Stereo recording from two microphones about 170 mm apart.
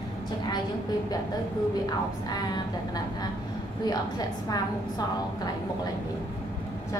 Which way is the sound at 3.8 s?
25° left (ahead or behind).